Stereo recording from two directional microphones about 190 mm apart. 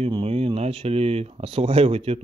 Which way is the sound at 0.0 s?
30° right (ahead or behind).